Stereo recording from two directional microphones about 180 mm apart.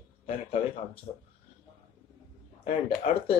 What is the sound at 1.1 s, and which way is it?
Speech, 35° left (ahead or behind).